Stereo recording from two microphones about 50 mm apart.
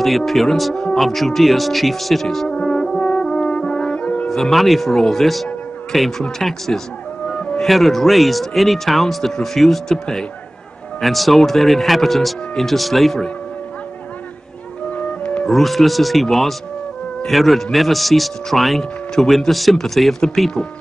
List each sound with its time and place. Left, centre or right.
0.0 s speech: centre
2.5 s brass instrument: centre
4.3 s speech: centre
14.9 s music: left
15.5 s speech: centre